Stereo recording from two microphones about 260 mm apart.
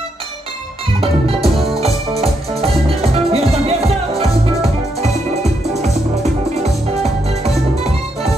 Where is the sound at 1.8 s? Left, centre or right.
Right.